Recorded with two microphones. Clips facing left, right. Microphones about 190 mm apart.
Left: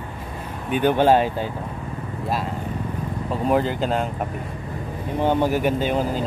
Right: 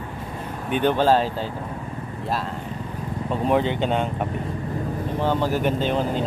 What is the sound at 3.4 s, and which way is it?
Speech, centre (ahead or behind).